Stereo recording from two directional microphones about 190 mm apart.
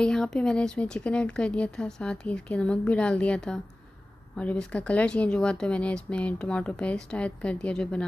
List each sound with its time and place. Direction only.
0.0 s speech: 5° left (ahead or behind)